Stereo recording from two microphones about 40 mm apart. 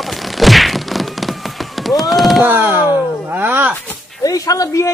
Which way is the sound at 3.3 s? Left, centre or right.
Right.